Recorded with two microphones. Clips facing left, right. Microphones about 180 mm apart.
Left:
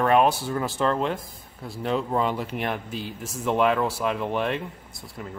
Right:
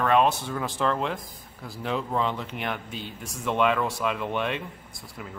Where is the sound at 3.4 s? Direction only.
35° left (ahead or behind).